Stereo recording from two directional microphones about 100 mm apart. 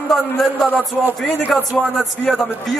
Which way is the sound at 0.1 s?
5° left (ahead or behind).